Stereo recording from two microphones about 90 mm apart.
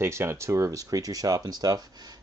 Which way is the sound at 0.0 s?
30° right (ahead or behind).